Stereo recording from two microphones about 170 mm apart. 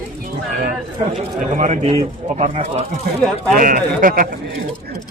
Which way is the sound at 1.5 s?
45° right (ahead or behind).